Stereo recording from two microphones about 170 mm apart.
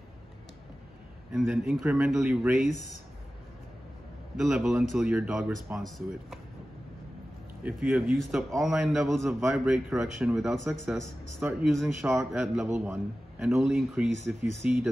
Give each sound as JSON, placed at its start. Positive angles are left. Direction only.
{"t": 1.3, "sound": "speech", "side_deg": -5}
{"t": 4.4, "sound": "speech", "side_deg": 0}
{"t": 7.6, "sound": "speech", "side_deg": -5}
{"t": 9.2, "sound": "speech", "side_deg": -15}
{"t": 9.5, "sound": "a man's voice", "side_deg": -5}
{"t": 13.7, "sound": "speech", "side_deg": -5}